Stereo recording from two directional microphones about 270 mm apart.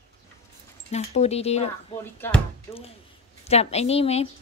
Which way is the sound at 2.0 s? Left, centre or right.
Centre.